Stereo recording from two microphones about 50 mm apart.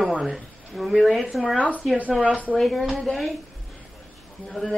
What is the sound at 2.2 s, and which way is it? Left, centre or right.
Speech, right.